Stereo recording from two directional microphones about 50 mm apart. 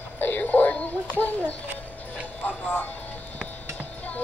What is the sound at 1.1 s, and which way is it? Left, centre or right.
A child's voice, left.